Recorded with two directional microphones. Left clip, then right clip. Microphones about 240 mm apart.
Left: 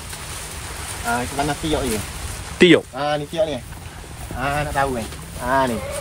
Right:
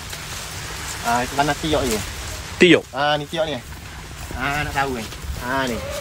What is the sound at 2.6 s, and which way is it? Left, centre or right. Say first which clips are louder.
Speech: even; centre.